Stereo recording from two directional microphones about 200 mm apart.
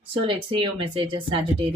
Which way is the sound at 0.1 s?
25° right (ahead or behind).